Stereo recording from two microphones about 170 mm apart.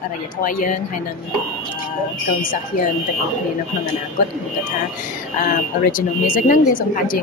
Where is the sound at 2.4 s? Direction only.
55° left (ahead or behind).